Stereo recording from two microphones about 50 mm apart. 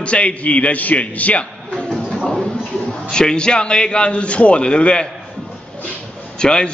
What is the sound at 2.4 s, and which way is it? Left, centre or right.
A man's voice, centre.